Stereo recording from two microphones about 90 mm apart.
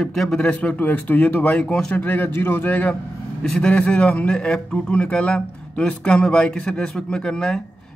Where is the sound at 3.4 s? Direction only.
10° left (ahead or behind).